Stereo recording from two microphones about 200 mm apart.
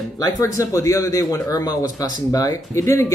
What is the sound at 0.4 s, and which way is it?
Speech, 15° left (ahead or behind).